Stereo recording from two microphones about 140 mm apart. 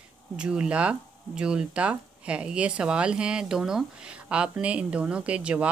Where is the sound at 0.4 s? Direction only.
5° right (ahead or behind).